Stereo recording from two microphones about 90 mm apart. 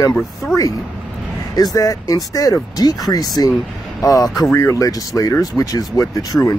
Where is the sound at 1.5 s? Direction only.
45° left (ahead or behind).